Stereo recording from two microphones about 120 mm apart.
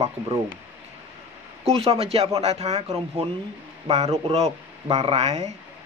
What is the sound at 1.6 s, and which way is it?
Speech, 55° right (ahead or behind).